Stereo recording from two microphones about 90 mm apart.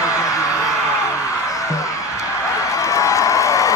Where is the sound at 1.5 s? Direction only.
35° left (ahead or behind).